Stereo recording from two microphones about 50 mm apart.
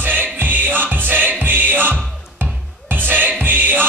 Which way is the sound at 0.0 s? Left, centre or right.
Right.